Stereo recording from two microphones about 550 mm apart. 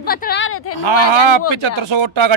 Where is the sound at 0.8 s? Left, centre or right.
Right.